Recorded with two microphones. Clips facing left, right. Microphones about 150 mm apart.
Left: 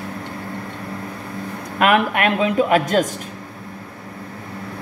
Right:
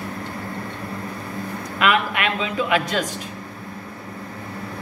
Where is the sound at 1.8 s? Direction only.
50° left (ahead or behind).